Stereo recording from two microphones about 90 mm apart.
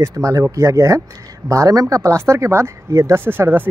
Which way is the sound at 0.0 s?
35° right (ahead or behind).